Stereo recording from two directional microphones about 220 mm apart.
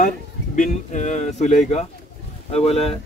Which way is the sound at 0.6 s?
35° left (ahead or behind).